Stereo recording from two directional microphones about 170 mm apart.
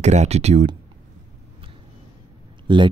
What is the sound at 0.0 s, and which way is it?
Speech, 40° right (ahead or behind).